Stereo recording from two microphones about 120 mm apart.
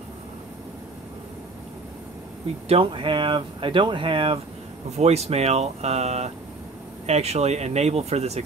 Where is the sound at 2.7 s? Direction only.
50° right (ahead or behind).